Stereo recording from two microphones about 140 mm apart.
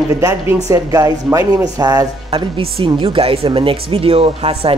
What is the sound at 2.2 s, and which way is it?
Speech, 40° right (ahead or behind).